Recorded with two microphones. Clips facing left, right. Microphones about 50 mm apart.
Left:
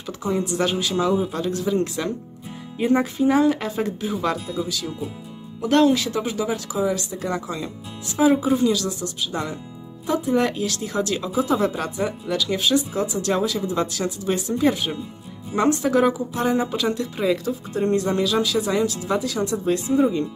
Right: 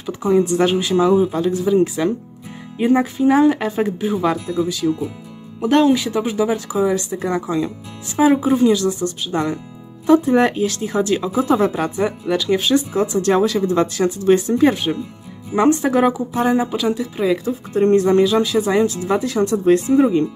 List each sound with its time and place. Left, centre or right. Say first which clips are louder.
0.2 s speech: right 7 dB; right
1.2 s speech: right 6 dB; centre
11.4 s speech: right 5 dB; right
15.5 s speech: right 4 dB; right
16.5 s speech: right 4 dB; centre
17.5 s speech: right 6 dB; right
18.2 s speech: right 5 dB; right